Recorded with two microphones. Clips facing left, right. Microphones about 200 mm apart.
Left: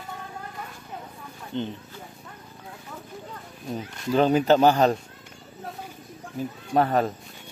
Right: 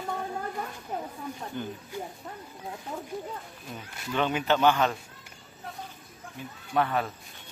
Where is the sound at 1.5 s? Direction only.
25° left (ahead or behind).